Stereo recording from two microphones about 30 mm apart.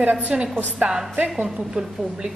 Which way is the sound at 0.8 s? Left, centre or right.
Right.